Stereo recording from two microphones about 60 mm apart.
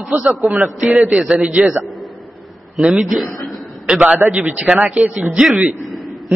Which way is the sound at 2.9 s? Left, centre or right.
Centre.